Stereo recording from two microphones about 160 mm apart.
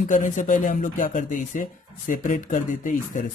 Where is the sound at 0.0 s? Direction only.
55° left (ahead or behind).